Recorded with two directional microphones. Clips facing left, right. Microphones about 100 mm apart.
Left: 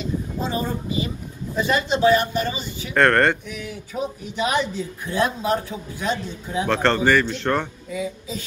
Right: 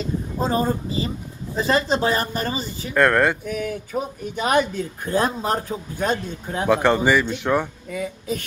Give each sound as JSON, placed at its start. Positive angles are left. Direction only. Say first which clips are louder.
{"t": 0.0, "sound": "speech", "louder": "right 2 dB", "side_deg": -40}
{"t": 2.9, "sound": "speech", "louder": "even", "side_deg": -5}
{"t": 3.4, "sound": "speech", "louder": "right 7 dB", "side_deg": -50}
{"t": 6.7, "sound": "a man's voice", "louder": "right 1 dB", "side_deg": -10}
{"t": 7.9, "sound": "speech", "louder": "right 1 dB", "side_deg": -55}